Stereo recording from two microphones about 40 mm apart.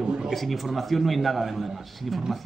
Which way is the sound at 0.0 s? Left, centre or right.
Right.